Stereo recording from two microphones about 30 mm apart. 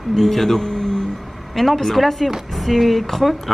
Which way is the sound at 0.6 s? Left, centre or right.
Left.